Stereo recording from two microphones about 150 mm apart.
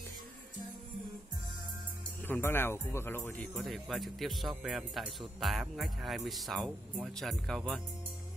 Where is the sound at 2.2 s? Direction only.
15° left (ahead or behind).